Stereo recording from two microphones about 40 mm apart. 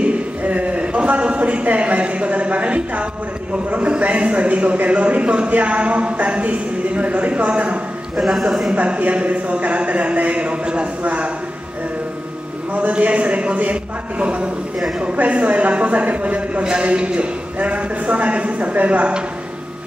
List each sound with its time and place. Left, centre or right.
0.4 s a man's voice: right
8.2 s a man's voice: centre
8.7 s speech: right
12.7 s speech: right